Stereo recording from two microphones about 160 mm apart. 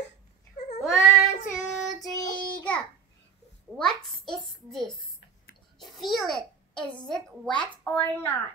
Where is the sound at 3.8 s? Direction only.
Centre (ahead or behind).